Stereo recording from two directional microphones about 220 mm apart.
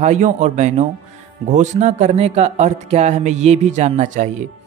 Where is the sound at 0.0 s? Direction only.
30° right (ahead or behind).